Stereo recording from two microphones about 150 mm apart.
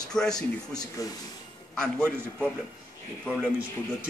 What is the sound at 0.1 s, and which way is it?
Speech, 5° left (ahead or behind).